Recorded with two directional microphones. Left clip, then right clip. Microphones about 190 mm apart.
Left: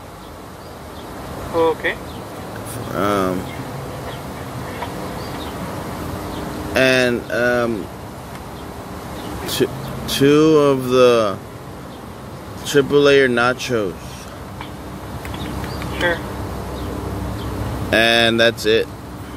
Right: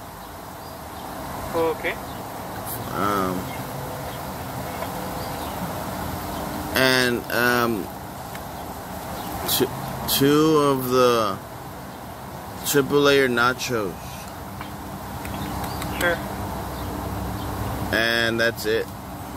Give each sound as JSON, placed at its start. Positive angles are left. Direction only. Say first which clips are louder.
{"t": 1.6, "sound": "speech", "louder": "left 6 dB", "side_deg": 15}
{"t": 3.0, "sound": "speech", "louder": "left 5 dB", "side_deg": 15}
{"t": 6.7, "sound": "speech", "louder": "left 4 dB", "side_deg": 10}
{"t": 9.5, "sound": "speech", "louder": "left 4 dB", "side_deg": 5}
{"t": 12.6, "sound": "speech", "louder": "left 5 dB", "side_deg": 10}
{"t": 17.8, "sound": "speech", "louder": "left 7 dB", "side_deg": 20}